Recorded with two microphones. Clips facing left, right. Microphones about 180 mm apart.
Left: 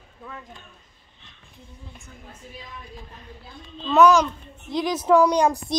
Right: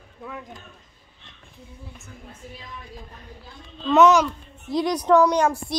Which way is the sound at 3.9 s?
20° right (ahead or behind).